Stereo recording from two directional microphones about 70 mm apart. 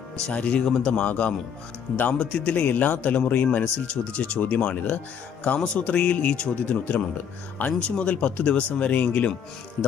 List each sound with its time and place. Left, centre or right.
0.3 s speech: centre